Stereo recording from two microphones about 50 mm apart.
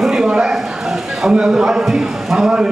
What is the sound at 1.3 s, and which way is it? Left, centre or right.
A man's voice, centre.